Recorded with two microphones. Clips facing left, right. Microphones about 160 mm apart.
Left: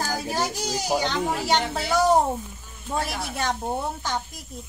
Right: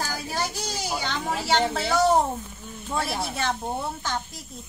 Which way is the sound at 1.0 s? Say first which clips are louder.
Left 3 dB; 15° left (ahead or behind).